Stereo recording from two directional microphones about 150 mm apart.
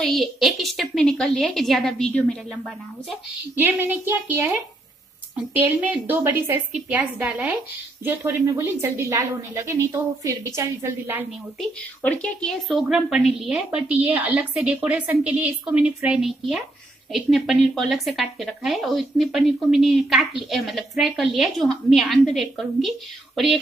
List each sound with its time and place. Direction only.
0.0 s speech: centre (ahead or behind)
3.5 s a woman's voice: 15° right (ahead or behind)
5.5 s a woman's voice: 10° right (ahead or behind)
12.0 s speech: 10° left (ahead or behind)